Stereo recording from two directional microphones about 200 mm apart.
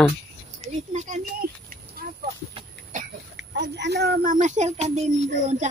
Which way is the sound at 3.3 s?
60° right (ahead or behind).